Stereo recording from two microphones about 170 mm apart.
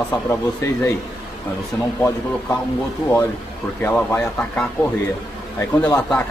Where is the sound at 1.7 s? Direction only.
15° left (ahead or behind).